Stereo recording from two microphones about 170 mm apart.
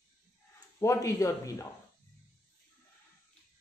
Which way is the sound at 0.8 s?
20° left (ahead or behind).